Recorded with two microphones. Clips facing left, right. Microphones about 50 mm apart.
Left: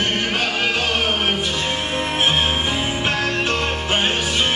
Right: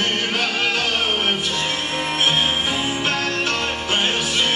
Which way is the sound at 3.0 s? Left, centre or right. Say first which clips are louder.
Left 1 dB; centre.